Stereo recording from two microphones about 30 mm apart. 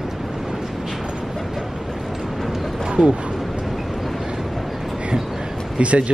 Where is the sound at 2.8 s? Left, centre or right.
Right.